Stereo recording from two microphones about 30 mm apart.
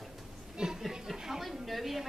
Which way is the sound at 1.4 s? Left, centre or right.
Centre.